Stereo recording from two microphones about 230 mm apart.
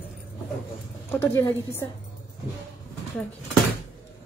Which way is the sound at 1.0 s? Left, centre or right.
Centre.